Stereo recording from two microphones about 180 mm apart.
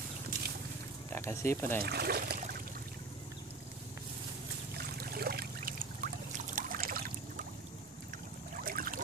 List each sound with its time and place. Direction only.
1.1 s speech: 15° left (ahead or behind)
1.8 s speech: 60° right (ahead or behind)
4.7 s trickle: 60° right (ahead or behind)
8.6 s boat: 50° right (ahead or behind)